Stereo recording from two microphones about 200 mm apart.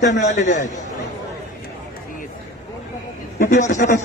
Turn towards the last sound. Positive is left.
turn(degrees=40)  # may be behind; listen again after turning